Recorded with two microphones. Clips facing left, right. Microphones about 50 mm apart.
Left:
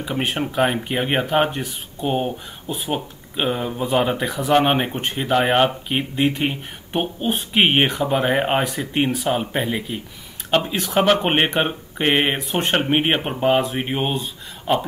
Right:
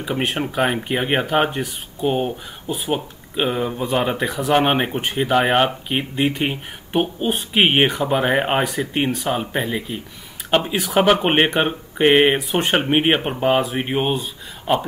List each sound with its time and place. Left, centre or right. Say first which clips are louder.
0.0 s speech: right 1 dB; centre
10.5 s speech: right 1 dB; centre